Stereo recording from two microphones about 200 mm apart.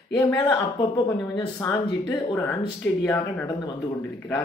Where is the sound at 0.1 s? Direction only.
10° left (ahead or behind).